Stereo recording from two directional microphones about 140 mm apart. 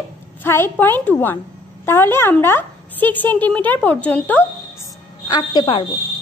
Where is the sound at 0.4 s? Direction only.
15° left (ahead or behind).